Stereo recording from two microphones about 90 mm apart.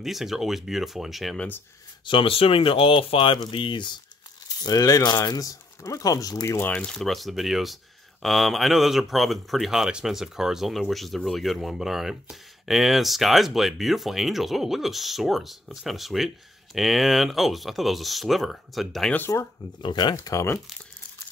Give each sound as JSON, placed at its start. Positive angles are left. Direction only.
{"t": 0.0, "sound": "speech", "side_deg": 0}
{"t": 2.0, "sound": "speech", "side_deg": 85}
{"t": 3.4, "sound": "speech", "side_deg": 65}
{"t": 4.6, "sound": "speech", "side_deg": 45}
{"t": 6.7, "sound": "speech", "side_deg": 10}
{"t": 7.0, "sound": "speech", "side_deg": 0}
{"t": 19.1, "sound": "speech", "side_deg": 25}
{"t": 19.8, "sound": "speech", "side_deg": 60}
{"t": 20.3, "sound": "speech", "side_deg": 30}